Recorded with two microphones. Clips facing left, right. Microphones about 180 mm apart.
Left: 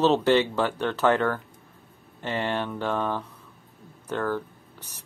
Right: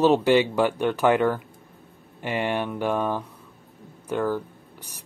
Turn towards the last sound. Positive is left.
turn(degrees=-10)  # may be behind; listen again after turning